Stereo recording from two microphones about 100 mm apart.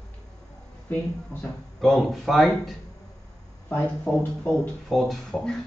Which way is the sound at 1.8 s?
Centre (ahead or behind).